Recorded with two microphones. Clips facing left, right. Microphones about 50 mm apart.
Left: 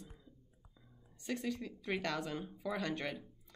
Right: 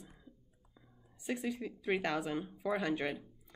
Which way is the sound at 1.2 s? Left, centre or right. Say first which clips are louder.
Right 2 dB; centre.